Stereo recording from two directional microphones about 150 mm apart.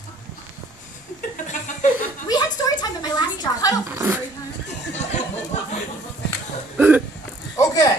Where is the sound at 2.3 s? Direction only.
25° left (ahead or behind).